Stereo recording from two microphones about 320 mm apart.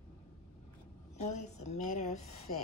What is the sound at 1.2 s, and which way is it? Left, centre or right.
Speech, left.